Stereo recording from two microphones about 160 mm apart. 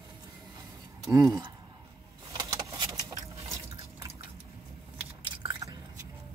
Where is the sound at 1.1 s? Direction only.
20° right (ahead or behind).